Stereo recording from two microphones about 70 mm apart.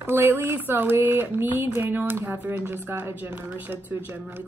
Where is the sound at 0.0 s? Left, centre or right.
Right.